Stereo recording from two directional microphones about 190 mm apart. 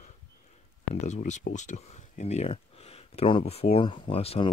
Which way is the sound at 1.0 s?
40° left (ahead or behind).